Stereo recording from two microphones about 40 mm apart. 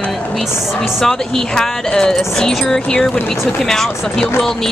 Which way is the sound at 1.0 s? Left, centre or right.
Centre.